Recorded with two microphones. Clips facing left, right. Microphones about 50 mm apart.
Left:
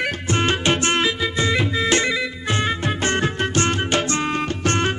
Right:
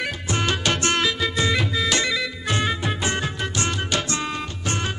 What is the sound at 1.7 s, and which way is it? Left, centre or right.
Music, left.